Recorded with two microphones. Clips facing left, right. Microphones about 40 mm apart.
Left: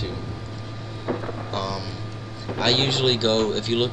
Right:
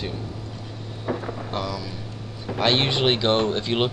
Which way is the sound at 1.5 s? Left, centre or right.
Centre.